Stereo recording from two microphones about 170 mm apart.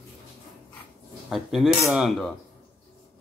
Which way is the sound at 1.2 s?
Centre (ahead or behind).